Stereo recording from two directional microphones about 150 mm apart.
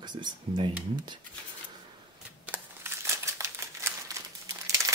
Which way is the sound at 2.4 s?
15° right (ahead or behind).